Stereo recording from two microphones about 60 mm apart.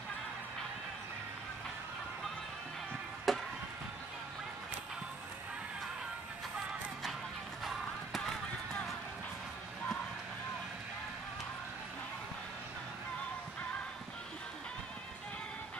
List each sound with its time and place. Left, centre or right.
3.3 s music: centre
7.6 s music: centre